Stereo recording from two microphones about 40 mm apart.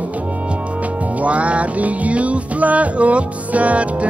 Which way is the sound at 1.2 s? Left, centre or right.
Right.